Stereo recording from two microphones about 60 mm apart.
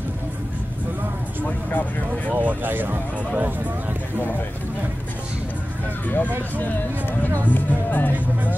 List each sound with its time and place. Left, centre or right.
1.4 s speech: left
2.3 s speech: right
6.0 s speech: left